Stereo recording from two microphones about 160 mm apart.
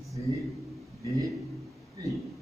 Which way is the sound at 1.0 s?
20° right (ahead or behind).